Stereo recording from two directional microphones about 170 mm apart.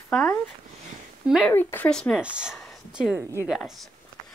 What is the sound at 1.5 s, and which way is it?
Speech, 10° left (ahead or behind).